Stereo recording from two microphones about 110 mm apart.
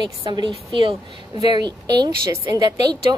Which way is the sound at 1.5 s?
40° right (ahead or behind).